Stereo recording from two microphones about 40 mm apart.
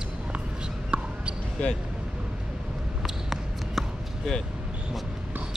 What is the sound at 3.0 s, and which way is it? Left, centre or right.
Basketball bounce, centre.